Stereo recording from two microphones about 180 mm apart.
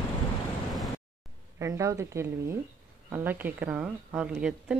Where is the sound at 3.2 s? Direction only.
10° right (ahead or behind).